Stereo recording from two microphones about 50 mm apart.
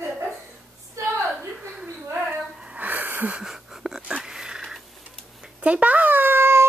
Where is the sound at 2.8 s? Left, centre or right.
Right.